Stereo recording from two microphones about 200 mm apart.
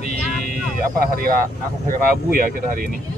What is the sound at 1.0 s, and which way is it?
Speech, 45° right (ahead or behind).